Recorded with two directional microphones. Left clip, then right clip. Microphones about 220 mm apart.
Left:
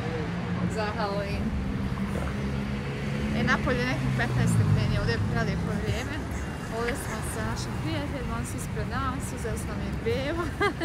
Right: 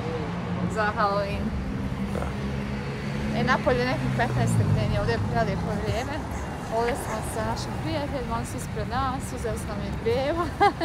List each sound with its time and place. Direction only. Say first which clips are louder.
0.7 s speech: right 7 dB; centre (ahead or behind)
3.3 s speech: right 4 dB; centre (ahead or behind)
6.7 s speech: right 5 dB; centre (ahead or behind)
10.0 s speech: right 4 dB; centre (ahead or behind)